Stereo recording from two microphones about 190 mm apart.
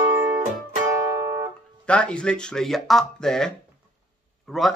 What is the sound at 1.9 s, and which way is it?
Speech, 5° left (ahead or behind).